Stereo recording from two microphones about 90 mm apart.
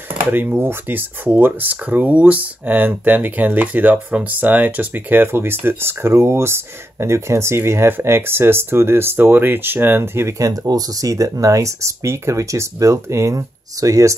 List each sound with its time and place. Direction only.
0.3 s speech: 20° right (ahead or behind)
10.4 s speech: 40° right (ahead or behind)